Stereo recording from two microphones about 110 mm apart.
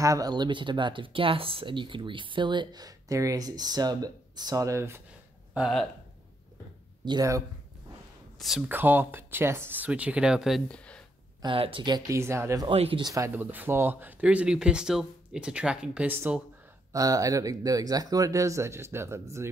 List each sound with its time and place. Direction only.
0.0 s speech: 35° right (ahead or behind)
5.5 s speech: 10° right (ahead or behind)
7.1 s speech: 35° right (ahead or behind)
8.4 s speech: centre (ahead or behind)
8.6 s speech: 20° right (ahead or behind)
10.7 s a sound: 10° left (ahead or behind)
11.4 s speech: 55° right (ahead or behind)
12.1 s speech: 25° right (ahead or behind)
12.6 s speech: 55° right (ahead or behind)
13.0 s speech: 30° right (ahead or behind)
13.4 s speech: 15° right (ahead or behind)
16.9 s speech: 30° right (ahead or behind)